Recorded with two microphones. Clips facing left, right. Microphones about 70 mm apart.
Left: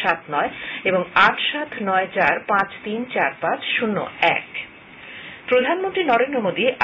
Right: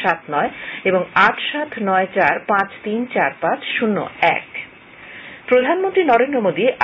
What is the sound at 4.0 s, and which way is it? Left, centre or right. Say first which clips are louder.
Speech: right 2 dB; right.